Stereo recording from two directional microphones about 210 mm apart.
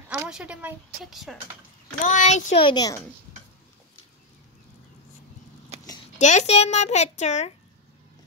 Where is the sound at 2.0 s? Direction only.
35° left (ahead or behind).